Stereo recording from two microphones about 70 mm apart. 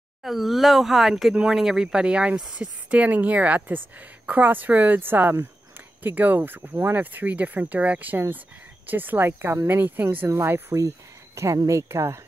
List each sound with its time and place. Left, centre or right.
0.2 s speech: centre; by 10.0 s right
10.3 s speech: right